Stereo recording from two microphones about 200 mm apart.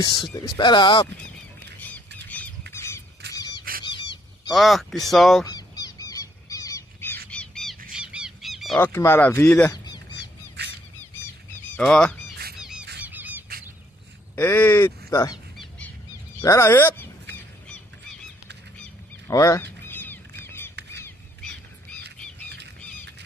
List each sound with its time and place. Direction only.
0.0 s speech: 20° left (ahead or behind)
1.8 s squawk: 10° left (ahead or behind)
3.3 s a sound: 20° left (ahead or behind)
4.5 s speech: centre (ahead or behind)
5.4 s goose: 20° left (ahead or behind); by 8.8 s centre (ahead or behind)
8.8 s speech: 10° left (ahead or behind)
10.6 s bird: 55° right (ahead or behind)
11.7 s speech: 5° left (ahead or behind)
12.5 s goose: 5° right (ahead or behind)
13.0 s squeak: 10° right (ahead or behind)
14.3 s speech: 10° left (ahead or behind)
15.5 s bird: centre (ahead or behind)
16.3 s speech: 15° left (ahead or behind)
19.2 s a sound: 15° left (ahead or behind)